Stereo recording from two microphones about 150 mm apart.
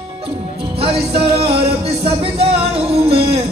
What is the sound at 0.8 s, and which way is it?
Music, 40° right (ahead or behind).